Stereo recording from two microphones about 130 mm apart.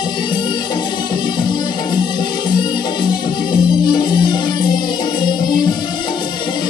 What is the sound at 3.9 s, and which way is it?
Music, 35° left (ahead or behind).